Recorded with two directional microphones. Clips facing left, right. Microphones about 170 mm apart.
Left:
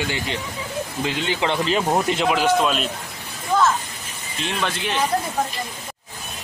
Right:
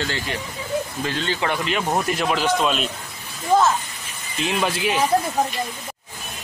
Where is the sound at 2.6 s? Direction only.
Centre (ahead or behind).